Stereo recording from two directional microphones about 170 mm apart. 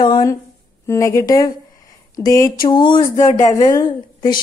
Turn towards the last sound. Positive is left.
turn(degrees=20)  # may be behind; listen again after turning